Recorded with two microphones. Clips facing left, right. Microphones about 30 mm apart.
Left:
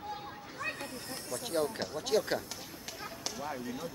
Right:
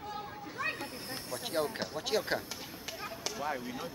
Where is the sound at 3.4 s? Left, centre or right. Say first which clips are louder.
Right 2 dB; centre.